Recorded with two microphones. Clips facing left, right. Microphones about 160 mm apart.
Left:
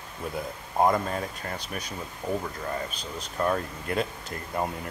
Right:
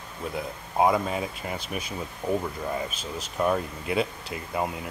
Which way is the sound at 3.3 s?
10° right (ahead or behind).